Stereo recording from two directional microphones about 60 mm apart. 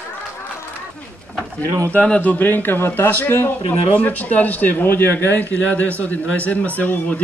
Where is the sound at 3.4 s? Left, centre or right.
Left.